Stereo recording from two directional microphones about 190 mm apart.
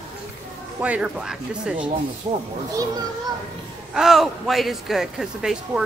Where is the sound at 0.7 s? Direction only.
5° right (ahead or behind).